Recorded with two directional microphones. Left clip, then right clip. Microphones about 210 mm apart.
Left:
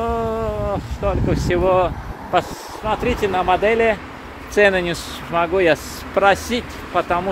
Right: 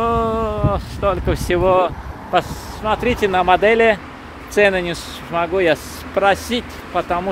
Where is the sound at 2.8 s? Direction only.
25° right (ahead or behind).